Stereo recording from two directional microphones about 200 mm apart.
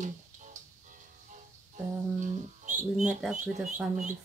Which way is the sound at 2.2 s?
40° right (ahead or behind).